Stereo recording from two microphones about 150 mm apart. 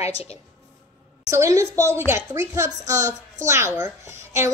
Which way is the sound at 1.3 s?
20° right (ahead or behind).